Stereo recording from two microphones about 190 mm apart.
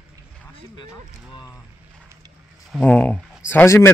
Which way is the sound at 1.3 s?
20° left (ahead or behind).